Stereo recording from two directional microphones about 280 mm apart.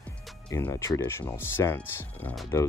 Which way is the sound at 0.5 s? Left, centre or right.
Centre.